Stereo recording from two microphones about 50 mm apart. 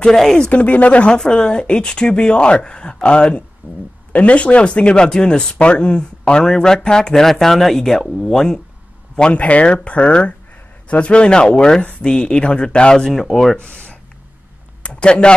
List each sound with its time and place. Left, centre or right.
0.0 s speech: centre
0.5 s speech: left
1.1 s speech: centre
9.3 s speech: left; by 13.6 s centre
13.6 s speech: left
14.8 s a sound: left